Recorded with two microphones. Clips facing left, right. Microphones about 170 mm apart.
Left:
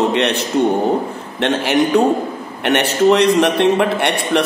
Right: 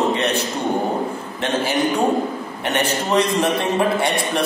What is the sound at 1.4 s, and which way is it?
Speech, 70° left (ahead or behind).